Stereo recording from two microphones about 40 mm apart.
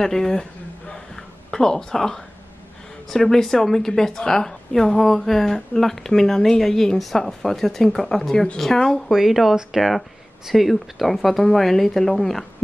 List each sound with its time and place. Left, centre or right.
0.0 s a woman's voice: centre
0.9 s a sound: centre
3.1 s a woman's voice: centre
9.1 s speech: centre